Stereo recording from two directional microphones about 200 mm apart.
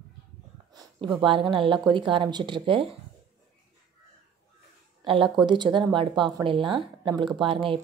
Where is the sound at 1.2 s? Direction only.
25° right (ahead or behind).